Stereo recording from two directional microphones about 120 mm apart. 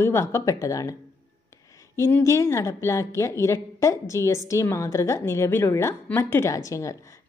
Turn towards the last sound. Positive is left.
turn(degrees=25)  # may be behind; listen again after turning